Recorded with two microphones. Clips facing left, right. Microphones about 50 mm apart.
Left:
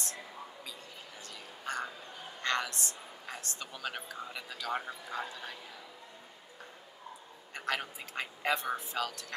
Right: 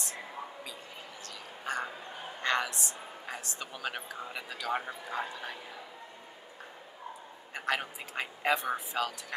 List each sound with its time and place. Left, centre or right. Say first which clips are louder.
1.6 s a sound: right 2 dB; centre
2.4 s a woman's voice: right 3 dB; centre
7.5 s speech: right 3 dB; centre